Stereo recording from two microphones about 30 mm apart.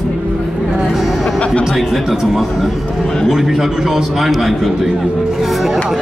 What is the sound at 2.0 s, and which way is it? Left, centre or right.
A man's voice, centre.